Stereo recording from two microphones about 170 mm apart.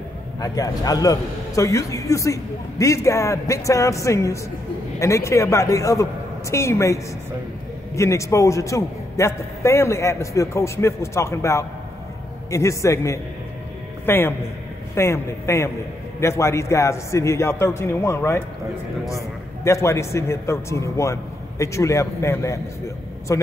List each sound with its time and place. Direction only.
0.4 s a man's voice: 20° left (ahead or behind)
19.6 s a man's voice: 15° left (ahead or behind)